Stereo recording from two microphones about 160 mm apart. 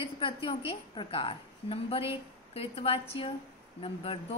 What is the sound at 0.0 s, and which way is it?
A woman's voice, 35° left (ahead or behind).